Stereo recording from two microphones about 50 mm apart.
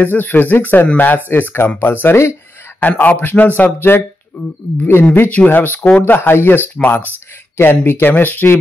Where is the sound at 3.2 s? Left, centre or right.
Left.